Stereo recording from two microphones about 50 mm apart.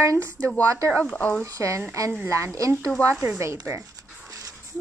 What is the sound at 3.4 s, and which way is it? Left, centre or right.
Speech, right.